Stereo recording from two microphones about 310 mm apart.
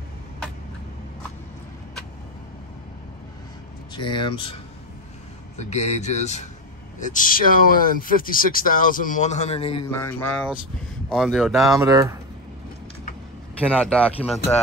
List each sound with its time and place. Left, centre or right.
3.9 s speech: centre
5.6 s speech: left
10.2 s speech: centre
13.6 s speech: centre